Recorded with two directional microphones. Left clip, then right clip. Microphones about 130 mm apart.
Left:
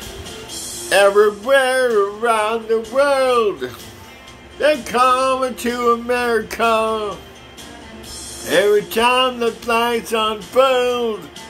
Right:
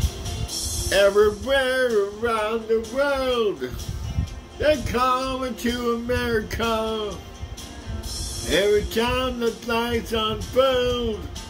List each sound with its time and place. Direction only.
0.8 s music: 30° right (ahead or behind)
8.5 s music: 30° right (ahead or behind)